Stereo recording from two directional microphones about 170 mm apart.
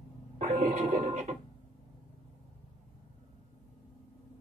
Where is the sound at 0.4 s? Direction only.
50° right (ahead or behind).